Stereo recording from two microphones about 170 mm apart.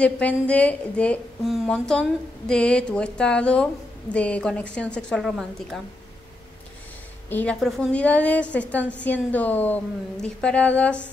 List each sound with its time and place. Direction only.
0.0 s a woman's voice: 5° left (ahead or behind)
7.2 s a woman's voice: 10° left (ahead or behind)